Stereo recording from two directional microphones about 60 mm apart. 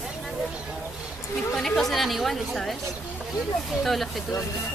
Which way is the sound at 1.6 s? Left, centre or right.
Centre.